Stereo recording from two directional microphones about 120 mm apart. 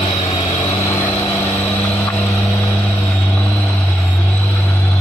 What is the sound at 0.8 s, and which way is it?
Vehicle, 25° left (ahead or behind).